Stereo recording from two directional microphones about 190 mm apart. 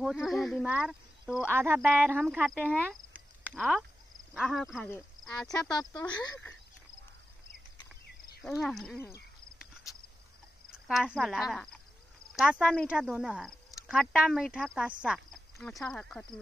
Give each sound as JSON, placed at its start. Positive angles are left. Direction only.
{"t": 0.0, "sound": "speech", "side_deg": 0}
{"t": 5.7, "sound": "speech", "side_deg": 20}
{"t": 8.5, "sound": "speech", "side_deg": 0}
{"t": 10.7, "sound": "speech", "side_deg": -5}